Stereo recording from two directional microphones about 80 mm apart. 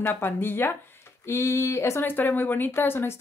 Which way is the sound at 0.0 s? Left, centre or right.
Left.